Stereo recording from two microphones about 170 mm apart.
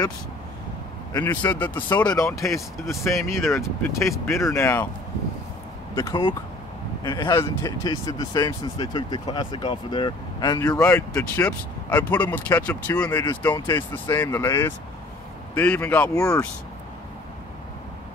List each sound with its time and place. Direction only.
1.1 s speech: 15° left (ahead or behind)
7.0 s speech: 25° left (ahead or behind)
10.9 s speech: 15° left (ahead or behind)
13.6 s speech: 25° left (ahead or behind)
14.1 s speech: 15° left (ahead or behind)